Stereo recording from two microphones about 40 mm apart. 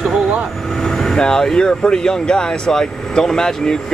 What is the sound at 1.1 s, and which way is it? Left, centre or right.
Speech, centre.